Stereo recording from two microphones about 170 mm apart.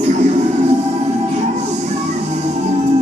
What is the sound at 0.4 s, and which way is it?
Music, 40° right (ahead or behind).